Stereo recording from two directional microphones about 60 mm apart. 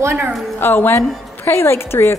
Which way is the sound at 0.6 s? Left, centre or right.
Left.